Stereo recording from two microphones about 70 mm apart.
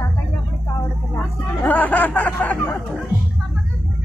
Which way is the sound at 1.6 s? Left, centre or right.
Left.